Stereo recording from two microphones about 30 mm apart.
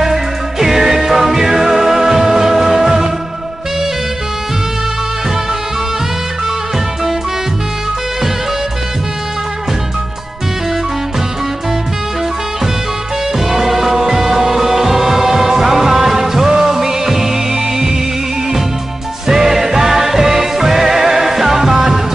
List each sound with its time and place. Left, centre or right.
0.0 s music: centre
13.4 s music: centre
16.4 s music: right
19.2 s music: centre